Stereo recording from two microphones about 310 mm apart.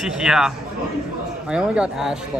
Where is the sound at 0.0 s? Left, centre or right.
Centre.